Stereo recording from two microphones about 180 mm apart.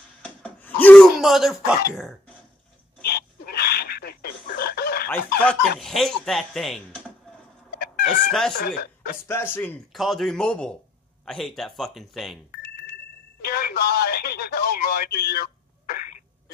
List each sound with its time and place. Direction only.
0.2 s a sound: 10° left (ahead or behind)
1.2 s speech: centre (ahead or behind)
3.0 s a sound: 60° left (ahead or behind)
5.5 s speech: centre (ahead or behind)
7.8 s cat: 50° left (ahead or behind)
8.3 s speech: centre (ahead or behind)
8.5 s speech: 55° left (ahead or behind)
9.3 s speech: 10° left (ahead or behind)
9.9 s speech: centre (ahead or behind)
13.4 s speech: 60° left (ahead or behind)